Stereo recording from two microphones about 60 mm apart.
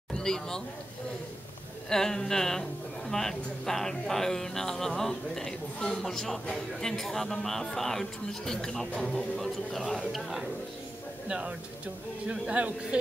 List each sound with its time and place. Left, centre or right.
0.1 s speech: centre
1.9 s a man's voice: centre
11.2 s a man's voice: centre